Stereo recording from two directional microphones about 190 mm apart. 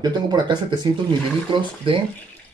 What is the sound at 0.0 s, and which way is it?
Speech, 20° right (ahead or behind).